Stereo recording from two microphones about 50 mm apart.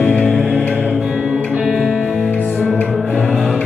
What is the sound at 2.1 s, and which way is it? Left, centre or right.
Music, left.